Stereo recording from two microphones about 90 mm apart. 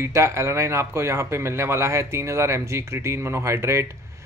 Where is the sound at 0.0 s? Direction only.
30° right (ahead or behind).